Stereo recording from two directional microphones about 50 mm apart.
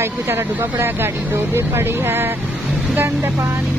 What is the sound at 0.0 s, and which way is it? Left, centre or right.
Speech, right.